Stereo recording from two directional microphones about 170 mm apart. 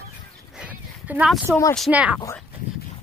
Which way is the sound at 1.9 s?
10° right (ahead or behind).